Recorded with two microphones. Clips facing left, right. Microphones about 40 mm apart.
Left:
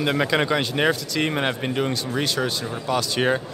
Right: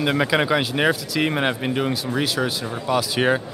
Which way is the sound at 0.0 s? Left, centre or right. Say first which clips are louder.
Right 1 dB; centre.